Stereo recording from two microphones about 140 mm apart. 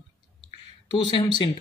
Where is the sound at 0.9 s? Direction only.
35° left (ahead or behind).